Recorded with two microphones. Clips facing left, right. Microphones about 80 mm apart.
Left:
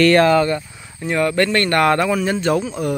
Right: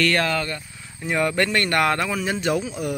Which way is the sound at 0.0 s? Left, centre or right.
Left.